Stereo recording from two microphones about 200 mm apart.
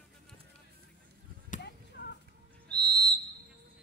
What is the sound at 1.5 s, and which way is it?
Chop, 40° left (ahead or behind).